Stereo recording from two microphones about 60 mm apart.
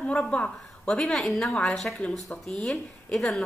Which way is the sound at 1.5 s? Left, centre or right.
Centre.